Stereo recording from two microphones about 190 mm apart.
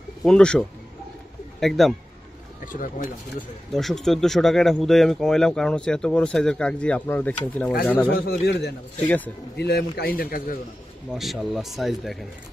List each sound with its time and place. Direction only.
0.2 s speech: 5° left (ahead or behind)
2.6 s speech: 45° left (ahead or behind)
3.7 s speech: centre (ahead or behind)
8.1 s a man's voice: 55° left (ahead or behind)
9.0 s a man's voice: 10° left (ahead or behind)
9.6 s a man's voice: 60° left (ahead or behind)
11.1 s speech: centre (ahead or behind)